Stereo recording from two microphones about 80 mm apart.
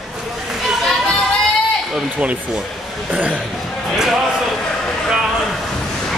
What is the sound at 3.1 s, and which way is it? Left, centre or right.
Speech, centre.